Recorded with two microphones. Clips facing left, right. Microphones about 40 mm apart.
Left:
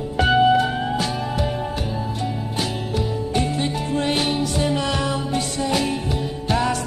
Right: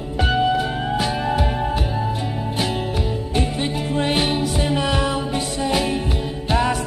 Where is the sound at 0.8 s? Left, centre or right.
Centre.